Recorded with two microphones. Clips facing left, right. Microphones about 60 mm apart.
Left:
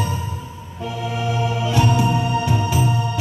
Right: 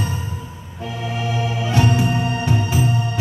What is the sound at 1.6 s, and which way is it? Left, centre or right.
Music, right.